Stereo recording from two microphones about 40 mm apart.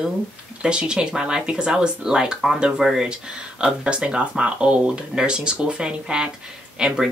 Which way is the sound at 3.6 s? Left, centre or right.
Right.